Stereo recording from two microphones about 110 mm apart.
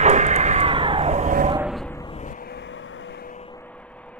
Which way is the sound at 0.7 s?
55° right (ahead or behind).